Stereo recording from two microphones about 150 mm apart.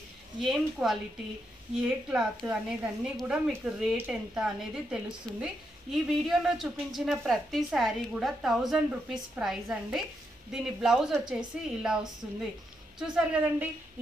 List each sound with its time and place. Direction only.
0.4 s a woman's voice: centre (ahead or behind)